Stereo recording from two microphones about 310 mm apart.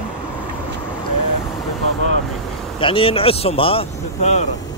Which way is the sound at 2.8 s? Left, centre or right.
Centre.